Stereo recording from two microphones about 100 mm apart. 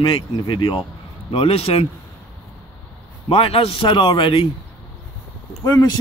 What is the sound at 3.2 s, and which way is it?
A man's voice, 70° left (ahead or behind).